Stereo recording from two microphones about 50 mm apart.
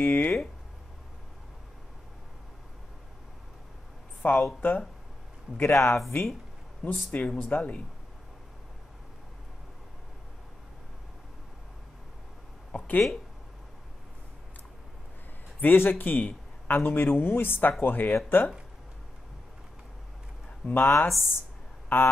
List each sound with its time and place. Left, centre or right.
0.0 s speech: left
4.2 s speech: left
5.6 s speech: left
6.8 s speech: left
7.3 s speech: left
12.7 s speech: left
15.6 s speech: left
20.7 s speech: left
21.1 s speech: left
21.8 s speech: left